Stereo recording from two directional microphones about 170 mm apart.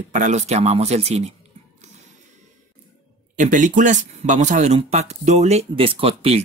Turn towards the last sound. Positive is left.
turn(degrees=-35)  # may be behind; listen again after turning